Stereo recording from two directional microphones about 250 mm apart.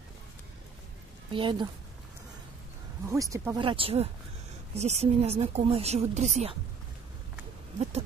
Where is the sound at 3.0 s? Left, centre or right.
Centre; by 6.5 s right.